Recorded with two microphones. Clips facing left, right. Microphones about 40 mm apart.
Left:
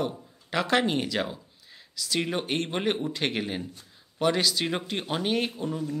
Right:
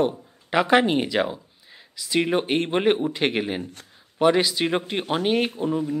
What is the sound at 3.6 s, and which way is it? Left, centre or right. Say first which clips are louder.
Speech: right 3 dB; right.